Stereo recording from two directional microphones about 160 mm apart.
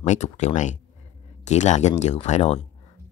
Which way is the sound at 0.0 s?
45° left (ahead or behind).